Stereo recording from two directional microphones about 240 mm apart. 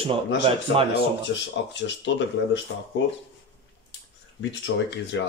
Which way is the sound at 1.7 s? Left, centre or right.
Left.